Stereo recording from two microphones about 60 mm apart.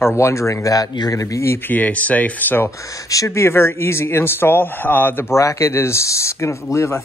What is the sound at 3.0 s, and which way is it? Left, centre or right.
Speech, left.